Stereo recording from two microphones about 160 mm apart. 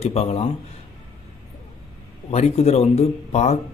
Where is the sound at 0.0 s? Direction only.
40° left (ahead or behind).